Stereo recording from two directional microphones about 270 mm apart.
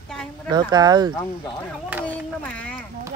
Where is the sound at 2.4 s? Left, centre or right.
Centre.